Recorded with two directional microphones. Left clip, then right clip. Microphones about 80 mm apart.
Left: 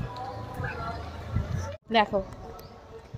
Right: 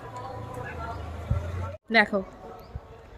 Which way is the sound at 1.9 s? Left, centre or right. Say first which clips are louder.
Right 2 dB; right.